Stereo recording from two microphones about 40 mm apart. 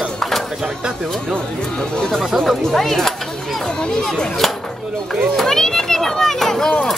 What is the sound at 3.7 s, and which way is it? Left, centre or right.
A child's voice, centre.